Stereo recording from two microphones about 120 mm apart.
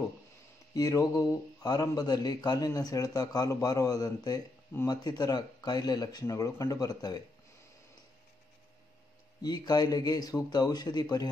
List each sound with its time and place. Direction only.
0.7 s a man's voice: 30° left (ahead or behind)
9.4 s a man's voice: 35° left (ahead or behind)